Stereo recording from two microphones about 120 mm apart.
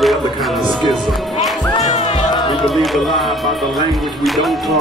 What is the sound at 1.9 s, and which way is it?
Music, 70° left (ahead or behind).